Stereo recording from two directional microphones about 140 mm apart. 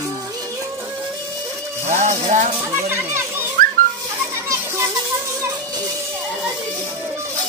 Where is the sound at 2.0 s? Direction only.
55° right (ahead or behind).